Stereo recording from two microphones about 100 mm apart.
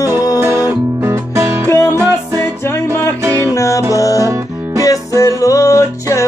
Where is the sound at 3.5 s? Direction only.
35° left (ahead or behind).